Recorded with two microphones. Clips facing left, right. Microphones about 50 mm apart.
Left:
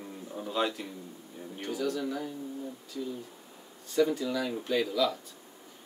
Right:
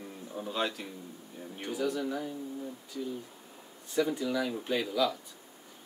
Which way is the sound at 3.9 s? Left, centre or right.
Centre.